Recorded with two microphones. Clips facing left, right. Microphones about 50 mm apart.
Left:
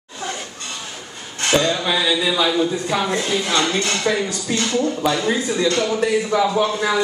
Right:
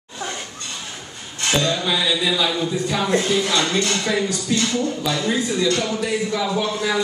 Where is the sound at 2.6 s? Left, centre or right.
Left.